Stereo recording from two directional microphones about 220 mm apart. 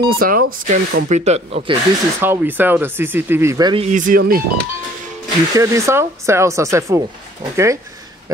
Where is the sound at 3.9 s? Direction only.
35° right (ahead or behind).